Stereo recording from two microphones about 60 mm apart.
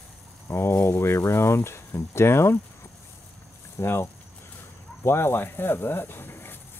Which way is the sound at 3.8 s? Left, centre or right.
Left.